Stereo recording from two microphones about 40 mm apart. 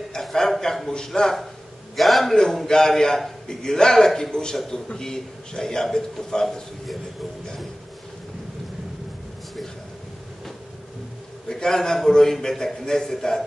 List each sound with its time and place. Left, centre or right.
0.1 s a man's voice: centre
2.0 s a man's voice: centre
2.6 s a man's voice: centre
11.4 s a man's voice: centre